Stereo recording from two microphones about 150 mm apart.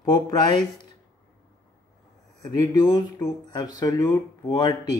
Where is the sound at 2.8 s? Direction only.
25° left (ahead or behind).